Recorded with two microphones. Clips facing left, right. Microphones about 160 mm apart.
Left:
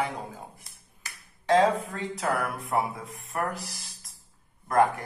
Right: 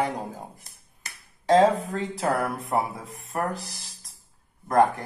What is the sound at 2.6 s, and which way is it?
Speech, centre (ahead or behind).